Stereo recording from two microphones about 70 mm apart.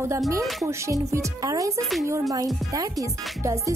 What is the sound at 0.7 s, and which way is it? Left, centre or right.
Speech, right.